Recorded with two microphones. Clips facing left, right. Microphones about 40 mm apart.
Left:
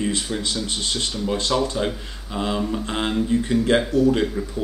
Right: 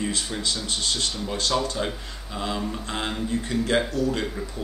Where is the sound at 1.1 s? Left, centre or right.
Centre.